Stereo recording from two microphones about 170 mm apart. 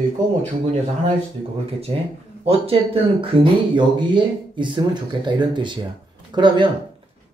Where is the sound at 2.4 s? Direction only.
35° right (ahead or behind).